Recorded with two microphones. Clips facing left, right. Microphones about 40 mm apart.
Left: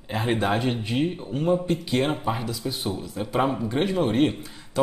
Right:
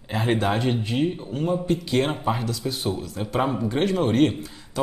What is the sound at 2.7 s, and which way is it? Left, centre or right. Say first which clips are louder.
Speech: right 1 dB; centre.